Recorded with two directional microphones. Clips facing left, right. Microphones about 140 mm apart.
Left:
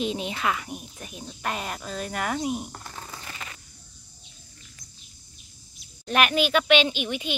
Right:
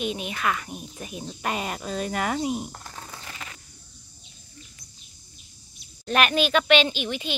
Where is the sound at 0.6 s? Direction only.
10° left (ahead or behind).